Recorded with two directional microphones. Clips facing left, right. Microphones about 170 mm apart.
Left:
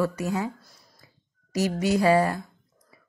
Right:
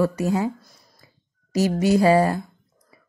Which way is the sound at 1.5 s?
30° right (ahead or behind).